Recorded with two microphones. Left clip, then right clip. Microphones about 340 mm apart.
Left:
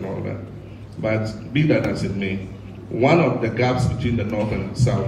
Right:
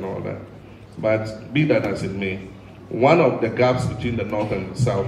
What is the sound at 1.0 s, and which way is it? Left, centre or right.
Mantra, right.